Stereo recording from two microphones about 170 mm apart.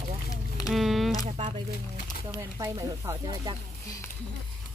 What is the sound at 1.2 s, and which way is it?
Speech, 40° right (ahead or behind).